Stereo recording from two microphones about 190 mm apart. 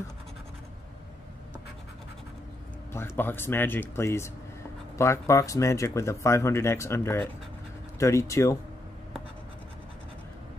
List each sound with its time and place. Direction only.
2.9 s speech: 10° left (ahead or behind)